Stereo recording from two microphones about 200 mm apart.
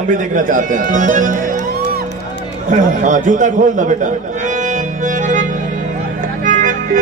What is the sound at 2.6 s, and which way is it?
A man's voice, 40° right (ahead or behind).